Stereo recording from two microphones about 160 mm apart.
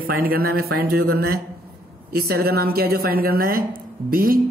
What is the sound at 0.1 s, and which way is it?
A woman's voice, 65° right (ahead or behind).